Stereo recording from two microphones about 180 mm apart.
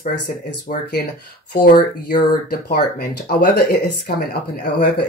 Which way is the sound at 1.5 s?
55° left (ahead or behind).